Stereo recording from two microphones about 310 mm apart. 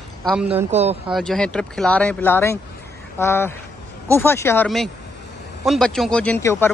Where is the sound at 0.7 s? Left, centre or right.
Right.